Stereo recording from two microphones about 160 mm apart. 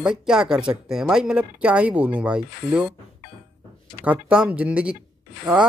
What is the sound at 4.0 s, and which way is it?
Speech, 10° right (ahead or behind).